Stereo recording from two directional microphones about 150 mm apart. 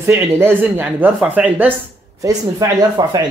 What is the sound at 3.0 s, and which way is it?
Speech, 25° right (ahead or behind).